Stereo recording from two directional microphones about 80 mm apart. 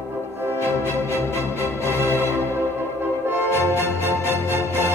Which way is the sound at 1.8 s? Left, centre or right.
Right.